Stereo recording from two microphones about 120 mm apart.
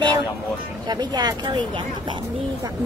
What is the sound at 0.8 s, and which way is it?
Speech, 35° right (ahead or behind).